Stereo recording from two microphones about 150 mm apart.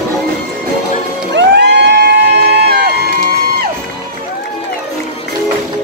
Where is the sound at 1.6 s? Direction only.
90° right.